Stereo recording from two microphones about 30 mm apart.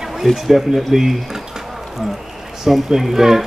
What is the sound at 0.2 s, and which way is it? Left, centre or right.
Speech, centre.